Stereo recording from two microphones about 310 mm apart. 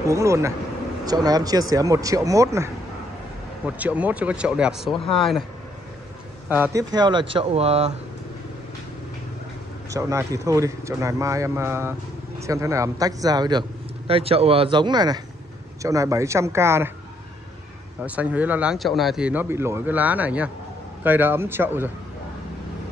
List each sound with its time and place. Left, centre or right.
0.0 s a man's voice: centre
6.5 s a man's voice: centre
9.8 s a man's voice: centre
18.0 s a man's voice: centre